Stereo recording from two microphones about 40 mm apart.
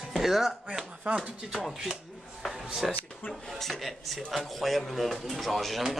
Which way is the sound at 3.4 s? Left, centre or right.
Centre.